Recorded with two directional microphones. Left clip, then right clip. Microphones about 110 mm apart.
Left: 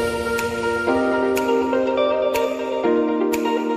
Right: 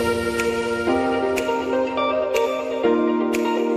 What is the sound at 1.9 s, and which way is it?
Music, centre (ahead or behind).